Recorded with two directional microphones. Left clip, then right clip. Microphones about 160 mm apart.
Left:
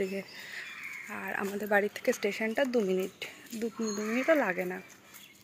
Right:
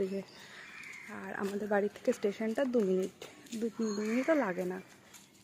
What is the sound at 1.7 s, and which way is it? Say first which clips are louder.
Speech: left 4 dB; 15° right (ahead or behind).